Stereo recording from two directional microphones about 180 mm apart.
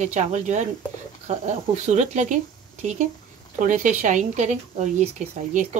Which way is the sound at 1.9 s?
40° right (ahead or behind).